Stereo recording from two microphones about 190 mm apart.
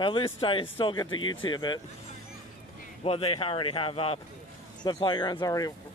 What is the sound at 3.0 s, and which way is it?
Speech, 30° left (ahead or behind).